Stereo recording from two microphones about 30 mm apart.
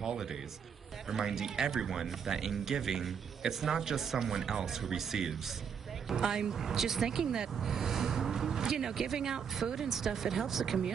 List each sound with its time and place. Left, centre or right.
0.0 s a sound: centre
1.1 s speech: centre
6.1 s speech: right